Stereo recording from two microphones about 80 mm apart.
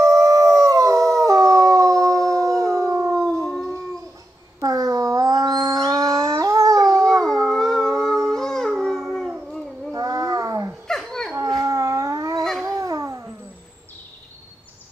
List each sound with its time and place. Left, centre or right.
0.0 s howl: right
3.4 s howl: centre
4.6 s a sound: right
5.9 s dog: right
7.1 s howl: centre
7.9 s a sound: right
8.4 s howl: centre
9.9 s a sound: right
10.9 s dog: centre
11.6 s dog: right
12.6 s babbling: right